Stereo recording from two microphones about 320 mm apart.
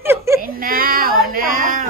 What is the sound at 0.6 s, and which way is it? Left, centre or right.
Child singing, right.